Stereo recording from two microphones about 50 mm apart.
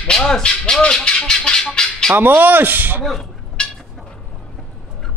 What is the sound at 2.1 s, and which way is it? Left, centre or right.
Speech, right.